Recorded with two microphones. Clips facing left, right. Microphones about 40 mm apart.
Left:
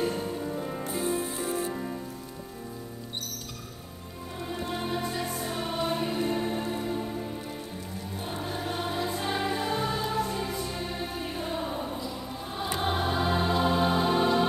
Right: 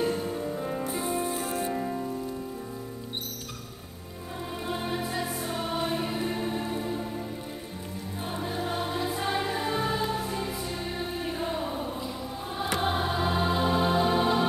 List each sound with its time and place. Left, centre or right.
0.0 s music: centre
0.8 s music: centre
4.6 s music: centre
8.3 s music: centre